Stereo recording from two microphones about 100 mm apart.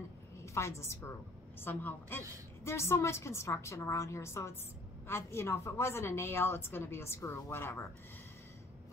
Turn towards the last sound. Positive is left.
turn(degrees=25)  # may be behind; listen again after turning